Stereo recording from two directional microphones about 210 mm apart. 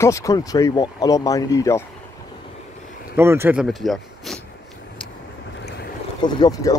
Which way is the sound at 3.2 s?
10° right (ahead or behind).